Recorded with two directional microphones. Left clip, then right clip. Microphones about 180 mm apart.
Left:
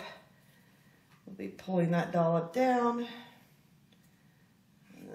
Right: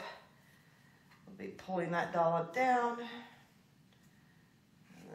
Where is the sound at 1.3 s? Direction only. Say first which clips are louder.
Left 5 dB; 45° right (ahead or behind).